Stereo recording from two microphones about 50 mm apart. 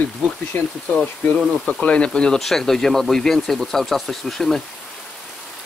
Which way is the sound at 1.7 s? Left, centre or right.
Left.